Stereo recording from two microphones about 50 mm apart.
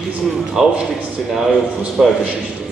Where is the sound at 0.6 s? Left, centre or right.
Centre.